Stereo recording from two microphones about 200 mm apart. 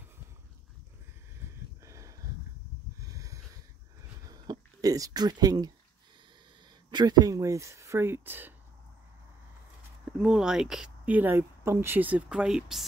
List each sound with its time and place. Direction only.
1.9 s a sound: 15° right (ahead or behind)
4.3 s speech: 20° right (ahead or behind)
6.9 s speech: 20° right (ahead or behind)
10.1 s speech: 5° right (ahead or behind)